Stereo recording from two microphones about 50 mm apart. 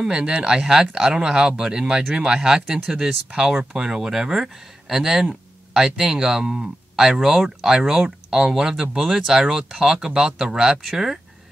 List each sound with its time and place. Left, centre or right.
0.0 s speech: centre